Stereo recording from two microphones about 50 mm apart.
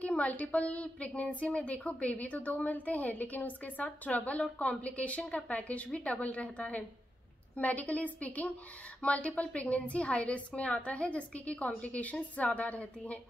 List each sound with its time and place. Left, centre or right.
0.0 s a woman's voice: left